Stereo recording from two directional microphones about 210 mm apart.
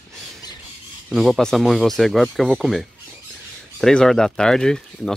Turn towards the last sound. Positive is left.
turn(degrees=5)  # may be behind; listen again after turning